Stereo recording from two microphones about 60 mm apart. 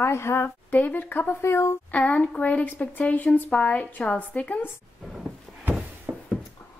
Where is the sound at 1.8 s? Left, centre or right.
Left.